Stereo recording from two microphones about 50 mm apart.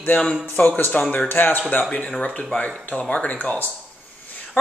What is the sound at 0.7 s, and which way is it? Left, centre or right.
Speech, left.